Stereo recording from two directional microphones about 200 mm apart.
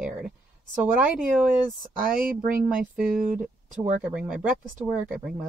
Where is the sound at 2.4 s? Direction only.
5° right (ahead or behind).